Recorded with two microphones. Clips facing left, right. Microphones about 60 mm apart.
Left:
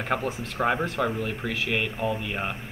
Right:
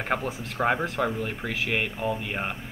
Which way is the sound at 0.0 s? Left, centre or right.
Centre.